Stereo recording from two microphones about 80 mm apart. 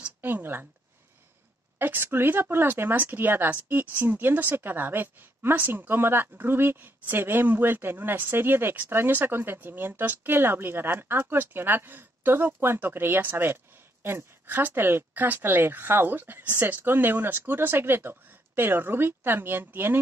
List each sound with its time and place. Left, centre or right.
0.2 s speech: right
1.8 s speech: right